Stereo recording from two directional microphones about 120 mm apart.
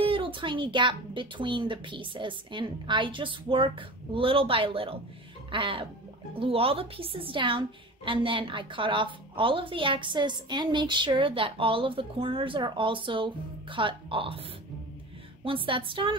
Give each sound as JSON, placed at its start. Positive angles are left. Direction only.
{"t": 0.0, "sound": "a woman's voice", "side_deg": -45}
{"t": 15.4, "sound": "a woman's voice", "side_deg": -45}